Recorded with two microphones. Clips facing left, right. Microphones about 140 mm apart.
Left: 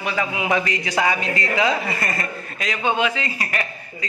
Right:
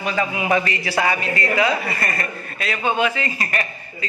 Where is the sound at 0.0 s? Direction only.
15° left (ahead or behind).